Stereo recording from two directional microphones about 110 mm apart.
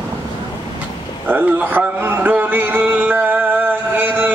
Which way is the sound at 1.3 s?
15° right (ahead or behind).